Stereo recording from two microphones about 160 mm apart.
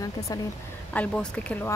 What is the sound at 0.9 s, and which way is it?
Speech, 5° left (ahead or behind).